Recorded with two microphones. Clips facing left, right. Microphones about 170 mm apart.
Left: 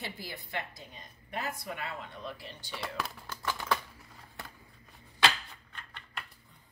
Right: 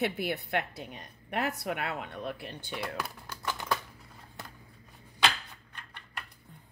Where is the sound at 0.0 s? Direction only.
70° right (ahead or behind).